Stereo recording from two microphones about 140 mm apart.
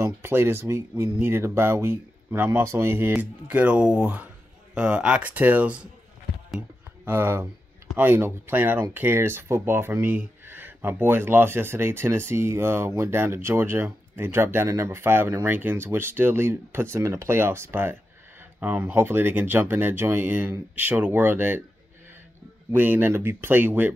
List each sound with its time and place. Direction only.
0.0 s speech: 15° right (ahead or behind)
7.1 s speech: 15° right (ahead or behind)
22.7 s speech: 15° right (ahead or behind)